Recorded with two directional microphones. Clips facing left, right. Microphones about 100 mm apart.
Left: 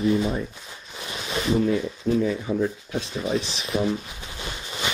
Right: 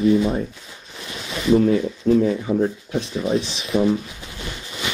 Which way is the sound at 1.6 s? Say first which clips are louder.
Right 6 dB; 45° right (ahead or behind).